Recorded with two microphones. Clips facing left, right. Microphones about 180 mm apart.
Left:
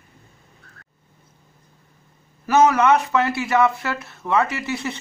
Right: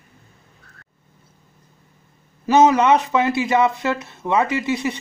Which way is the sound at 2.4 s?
20° right (ahead or behind).